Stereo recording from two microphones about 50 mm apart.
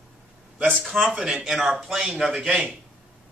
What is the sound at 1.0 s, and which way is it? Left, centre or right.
Speech, centre.